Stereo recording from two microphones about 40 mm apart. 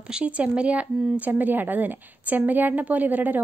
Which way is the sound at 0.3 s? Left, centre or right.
Right.